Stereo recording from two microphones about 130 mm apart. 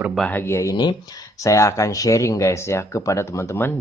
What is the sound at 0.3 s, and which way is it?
Speech, 15° left (ahead or behind).